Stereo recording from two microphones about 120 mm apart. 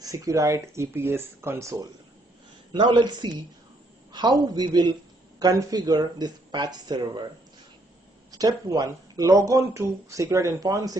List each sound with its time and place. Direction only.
0.0 s speech: 30° right (ahead or behind)
2.7 s speech: 40° right (ahead or behind)
8.3 s speech: 30° right (ahead or behind)